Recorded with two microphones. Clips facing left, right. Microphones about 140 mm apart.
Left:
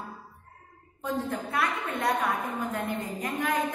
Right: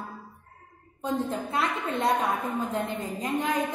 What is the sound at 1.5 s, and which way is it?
A woman's voice, 25° right (ahead or behind).